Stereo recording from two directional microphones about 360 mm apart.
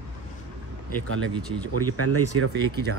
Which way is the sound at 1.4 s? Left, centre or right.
Centre.